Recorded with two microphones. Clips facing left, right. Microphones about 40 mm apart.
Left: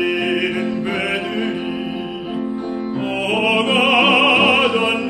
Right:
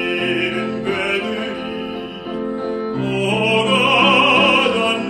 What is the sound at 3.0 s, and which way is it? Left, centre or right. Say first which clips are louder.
Music: even; centre.